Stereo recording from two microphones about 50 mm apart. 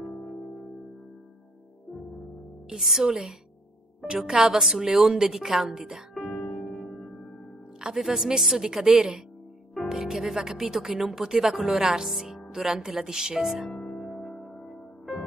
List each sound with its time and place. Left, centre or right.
2.7 s a woman's voice: centre
6.7 s music: centre
7.8 s speech: centre
13.7 s music: centre